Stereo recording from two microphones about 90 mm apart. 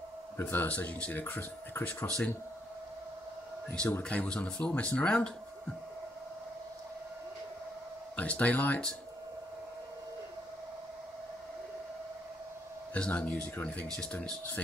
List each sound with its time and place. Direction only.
0.4 s speech: 20° left (ahead or behind)
4.0 s speech: 15° left (ahead or behind)
8.2 s speech: 15° left (ahead or behind)
12.9 s speech: 15° left (ahead or behind)